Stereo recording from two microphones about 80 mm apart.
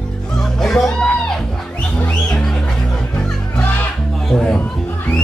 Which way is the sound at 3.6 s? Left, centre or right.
Left.